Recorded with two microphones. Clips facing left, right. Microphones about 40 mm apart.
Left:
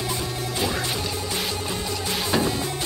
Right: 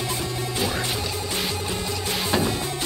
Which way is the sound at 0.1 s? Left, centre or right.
Centre.